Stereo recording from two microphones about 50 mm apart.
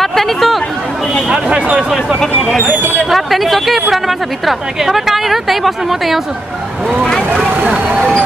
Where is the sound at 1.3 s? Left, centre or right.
Right.